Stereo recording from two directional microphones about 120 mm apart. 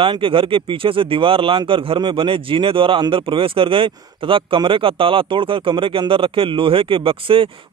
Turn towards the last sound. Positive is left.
turn(degrees=-50)  # may be behind; listen again after turning